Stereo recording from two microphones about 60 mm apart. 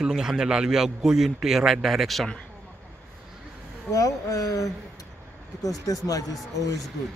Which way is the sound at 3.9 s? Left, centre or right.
Left.